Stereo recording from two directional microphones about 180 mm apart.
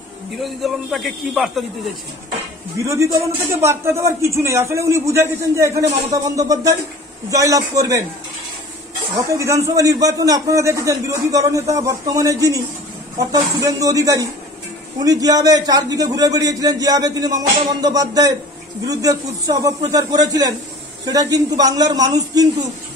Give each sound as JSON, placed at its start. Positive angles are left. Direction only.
{"t": 0.4, "sound": "a man's voice", "side_deg": 0}
{"t": 2.8, "sound": "a man's voice", "side_deg": -15}
{"t": 9.8, "sound": "a man's voice", "side_deg": -20}